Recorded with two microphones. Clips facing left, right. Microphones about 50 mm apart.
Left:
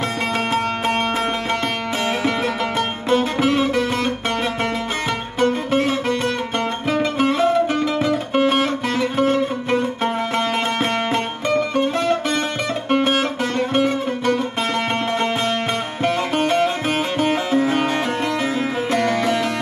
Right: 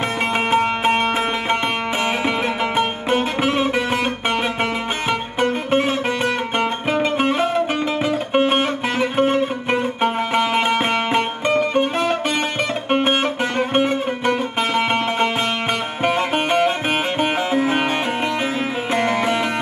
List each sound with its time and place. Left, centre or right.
0.5 s music: right
2.8 s music: right
5.4 s music: right
16.0 s music: right